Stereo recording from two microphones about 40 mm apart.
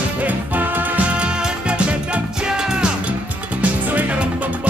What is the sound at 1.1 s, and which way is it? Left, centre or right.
Music, right.